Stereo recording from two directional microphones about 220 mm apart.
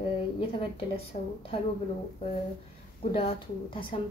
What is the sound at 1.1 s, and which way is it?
Speech, 30° left (ahead or behind).